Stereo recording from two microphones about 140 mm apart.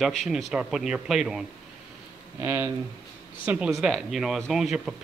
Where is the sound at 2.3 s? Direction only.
20° right (ahead or behind).